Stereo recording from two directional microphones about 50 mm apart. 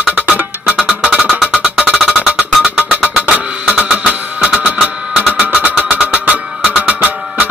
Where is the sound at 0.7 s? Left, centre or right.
Centre.